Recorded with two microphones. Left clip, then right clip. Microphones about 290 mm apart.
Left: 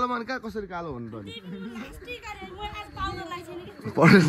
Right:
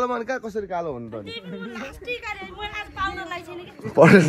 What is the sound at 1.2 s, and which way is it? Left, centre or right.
Speech, centre.